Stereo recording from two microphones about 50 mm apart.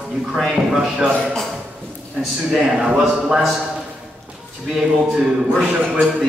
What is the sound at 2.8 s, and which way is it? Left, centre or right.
Speech, right.